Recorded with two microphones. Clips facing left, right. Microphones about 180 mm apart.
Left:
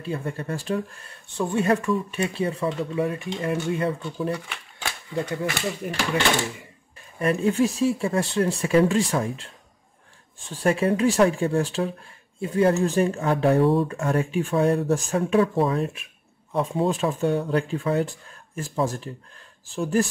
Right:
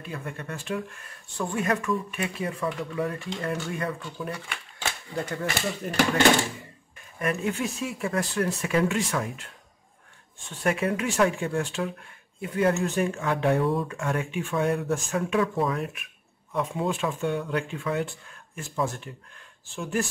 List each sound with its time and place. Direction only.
0.0 s speech: 30° left (ahead or behind)
5.1 s speech: 15° left (ahead or behind)
7.2 s speech: 30° left (ahead or behind)
10.5 s speech: 30° left (ahead or behind)